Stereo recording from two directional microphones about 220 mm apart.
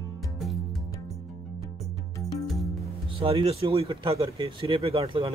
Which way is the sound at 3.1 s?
25° right (ahead or behind).